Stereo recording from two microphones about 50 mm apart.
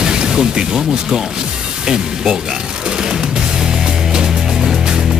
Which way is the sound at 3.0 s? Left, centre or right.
Centre.